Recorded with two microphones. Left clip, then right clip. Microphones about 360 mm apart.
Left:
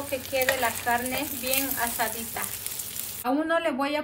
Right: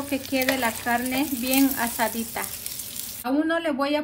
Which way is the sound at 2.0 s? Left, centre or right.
Centre.